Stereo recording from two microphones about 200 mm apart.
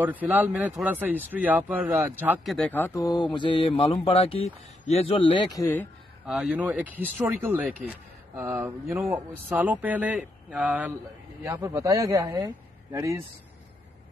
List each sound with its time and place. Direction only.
0.0 s speech: 10° right (ahead or behind)
2.5 s a man's voice: 10° left (ahead or behind); by 5.7 s 25° left (ahead or behind)
6.2 s speech: 5° right (ahead or behind)